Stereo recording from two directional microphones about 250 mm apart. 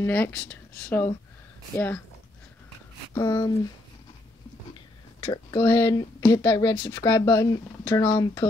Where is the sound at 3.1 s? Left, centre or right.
Centre.